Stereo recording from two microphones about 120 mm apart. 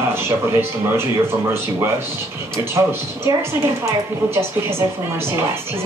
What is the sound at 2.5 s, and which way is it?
Speech, 20° right (ahead or behind).